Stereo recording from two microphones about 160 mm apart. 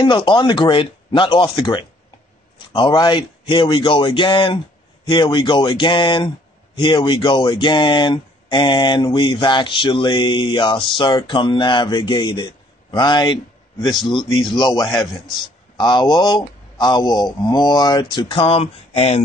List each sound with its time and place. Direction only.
0.0 s speech: 30° left (ahead or behind)